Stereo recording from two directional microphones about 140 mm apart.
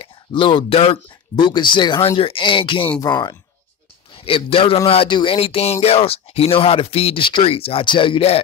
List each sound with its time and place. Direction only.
0.0 s a man's voice: 40° left (ahead or behind)
4.2 s a man's voice: 40° left (ahead or behind)